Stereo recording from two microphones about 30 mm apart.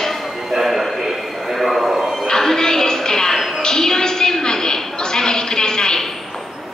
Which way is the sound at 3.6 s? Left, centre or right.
Centre.